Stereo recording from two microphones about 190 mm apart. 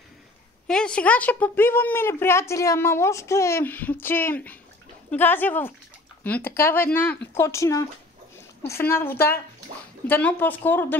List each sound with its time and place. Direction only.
0.7 s a woman's voice: 5° left (ahead or behind)